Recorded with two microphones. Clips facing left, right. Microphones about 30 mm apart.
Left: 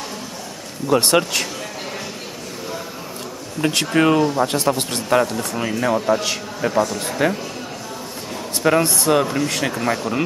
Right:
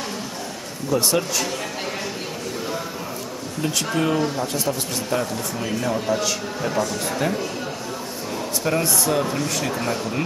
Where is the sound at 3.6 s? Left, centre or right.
Left.